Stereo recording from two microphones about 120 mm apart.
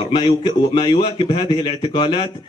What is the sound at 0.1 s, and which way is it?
A man's voice, 40° left (ahead or behind).